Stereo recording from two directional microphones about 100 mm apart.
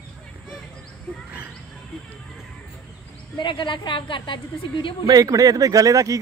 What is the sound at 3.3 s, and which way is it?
A woman's voice, 50° left (ahead or behind).